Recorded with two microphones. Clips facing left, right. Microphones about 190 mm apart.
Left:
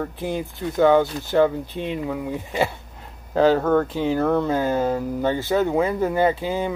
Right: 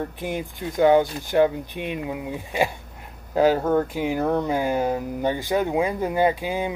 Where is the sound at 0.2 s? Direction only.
15° right (ahead or behind).